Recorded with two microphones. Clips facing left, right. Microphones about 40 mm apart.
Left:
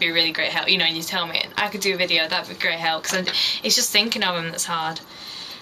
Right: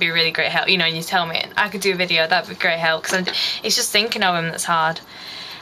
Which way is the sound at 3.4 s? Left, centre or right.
Centre.